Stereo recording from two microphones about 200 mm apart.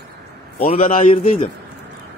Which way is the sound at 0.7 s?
35° left (ahead or behind).